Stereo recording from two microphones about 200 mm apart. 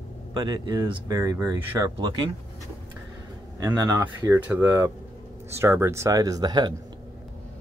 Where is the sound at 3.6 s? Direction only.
15° right (ahead or behind).